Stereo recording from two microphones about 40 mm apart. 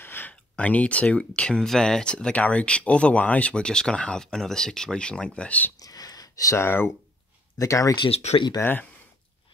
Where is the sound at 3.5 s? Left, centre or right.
Left.